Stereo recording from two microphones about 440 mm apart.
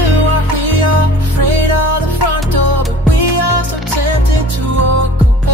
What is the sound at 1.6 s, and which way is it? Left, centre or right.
Music, right.